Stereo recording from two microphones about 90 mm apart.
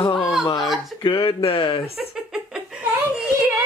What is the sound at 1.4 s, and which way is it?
Speech, 70° left (ahead or behind).